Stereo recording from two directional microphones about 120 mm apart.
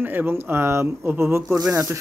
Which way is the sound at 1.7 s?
25° right (ahead or behind).